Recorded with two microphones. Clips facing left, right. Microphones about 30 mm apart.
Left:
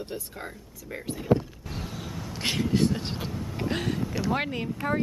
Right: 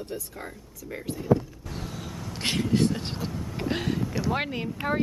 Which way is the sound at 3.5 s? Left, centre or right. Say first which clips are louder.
Right 1 dB; centre.